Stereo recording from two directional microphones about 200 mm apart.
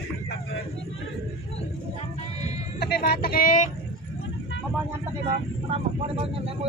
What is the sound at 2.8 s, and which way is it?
Speech, 55° left (ahead or behind).